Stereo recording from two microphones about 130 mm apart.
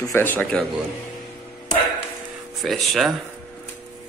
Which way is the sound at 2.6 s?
Centre (ahead or behind).